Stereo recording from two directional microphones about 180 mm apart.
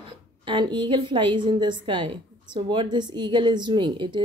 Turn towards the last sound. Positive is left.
turn(degrees=-25)  # may be behind; listen again after turning